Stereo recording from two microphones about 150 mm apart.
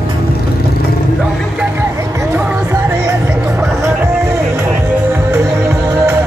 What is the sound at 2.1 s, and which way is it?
Music, 20° right (ahead or behind).